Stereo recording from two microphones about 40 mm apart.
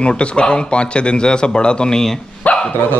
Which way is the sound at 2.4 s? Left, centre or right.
Left.